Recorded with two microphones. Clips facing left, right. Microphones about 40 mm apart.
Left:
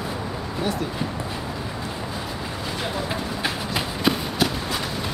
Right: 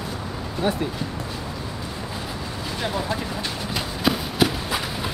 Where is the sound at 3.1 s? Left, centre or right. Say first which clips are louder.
Left 1 dB; left.